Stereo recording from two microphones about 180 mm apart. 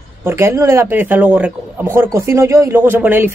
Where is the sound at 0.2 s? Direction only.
15° right (ahead or behind).